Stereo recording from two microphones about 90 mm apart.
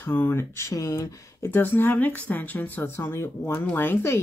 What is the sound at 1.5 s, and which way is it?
Speech, 25° left (ahead or behind).